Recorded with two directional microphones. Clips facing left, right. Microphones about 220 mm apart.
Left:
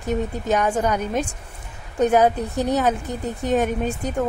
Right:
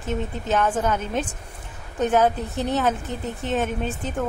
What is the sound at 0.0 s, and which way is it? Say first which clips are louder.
Speech: left 4 dB; 15° left (ahead or behind).